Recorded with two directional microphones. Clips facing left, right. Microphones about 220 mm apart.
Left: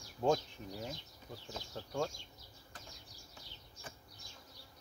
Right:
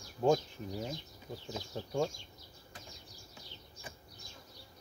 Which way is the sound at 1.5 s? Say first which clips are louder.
Right 5 dB; 15° right (ahead or behind).